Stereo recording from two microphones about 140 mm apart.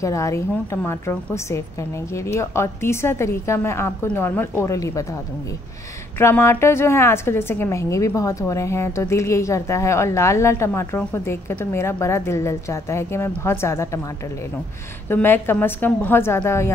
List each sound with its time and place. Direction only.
0.0 s a woman's voice: 20° left (ahead or behind)
6.1 s a woman's voice: 15° left (ahead or behind)
15.0 s a woman's voice: 15° left (ahead or behind)